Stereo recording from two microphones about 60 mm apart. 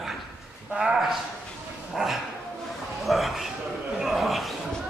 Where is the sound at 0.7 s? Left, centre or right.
Centre.